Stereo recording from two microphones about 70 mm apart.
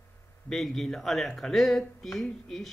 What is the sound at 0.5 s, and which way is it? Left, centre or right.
Speech, centre.